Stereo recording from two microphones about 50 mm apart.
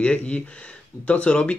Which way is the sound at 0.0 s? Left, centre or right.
Left.